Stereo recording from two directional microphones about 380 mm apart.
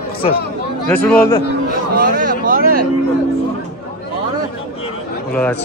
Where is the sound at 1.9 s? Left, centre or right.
Right.